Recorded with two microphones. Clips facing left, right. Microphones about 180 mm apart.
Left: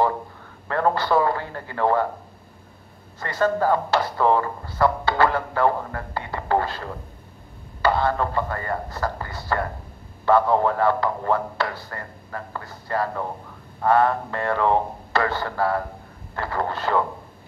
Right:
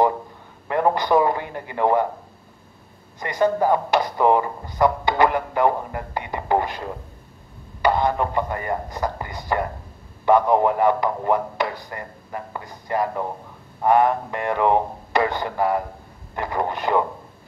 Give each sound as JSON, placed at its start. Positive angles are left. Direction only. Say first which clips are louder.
{"t": 0.7, "sound": "speech", "louder": "right 2 dB", "side_deg": -15}
{"t": 3.2, "sound": "a man's voice", "louder": "right 2 dB", "side_deg": -15}